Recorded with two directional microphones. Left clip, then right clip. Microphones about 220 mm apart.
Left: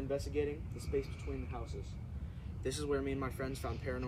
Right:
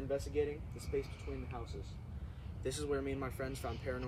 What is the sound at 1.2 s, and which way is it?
Speech, 5° right (ahead or behind).